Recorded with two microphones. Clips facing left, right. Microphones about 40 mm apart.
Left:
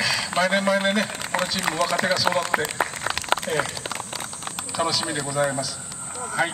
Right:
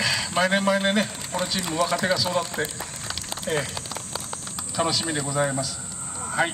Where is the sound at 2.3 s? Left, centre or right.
Left.